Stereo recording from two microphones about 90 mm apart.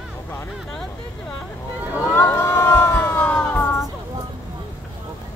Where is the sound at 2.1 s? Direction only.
30° left (ahead or behind).